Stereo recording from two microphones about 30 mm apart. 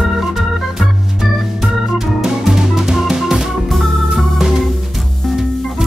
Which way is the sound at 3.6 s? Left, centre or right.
Centre.